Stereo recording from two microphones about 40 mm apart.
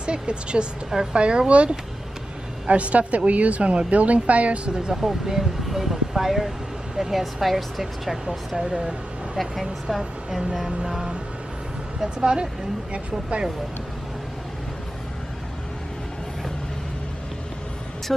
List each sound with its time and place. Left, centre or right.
0.0 s a woman's voice: right
4.6 s speech: centre
4.9 s speech: centre
9.4 s speech: centre
12.2 s speech: right